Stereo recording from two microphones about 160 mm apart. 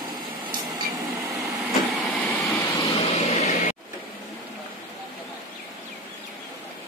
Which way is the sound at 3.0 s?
40° left (ahead or behind).